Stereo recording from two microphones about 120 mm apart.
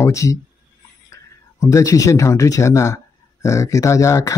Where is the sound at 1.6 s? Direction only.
25° left (ahead or behind).